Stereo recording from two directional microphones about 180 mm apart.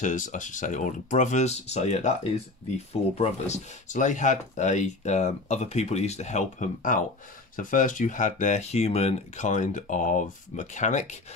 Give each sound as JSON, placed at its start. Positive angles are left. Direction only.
{"t": 0.0, "sound": "speech", "side_deg": 45}
{"t": 3.2, "sound": "speech", "side_deg": 40}